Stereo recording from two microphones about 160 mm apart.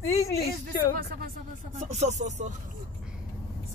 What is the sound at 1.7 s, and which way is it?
Music, 45° right (ahead or behind).